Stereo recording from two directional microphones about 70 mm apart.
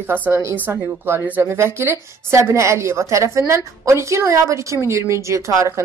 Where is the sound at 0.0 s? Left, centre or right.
Right.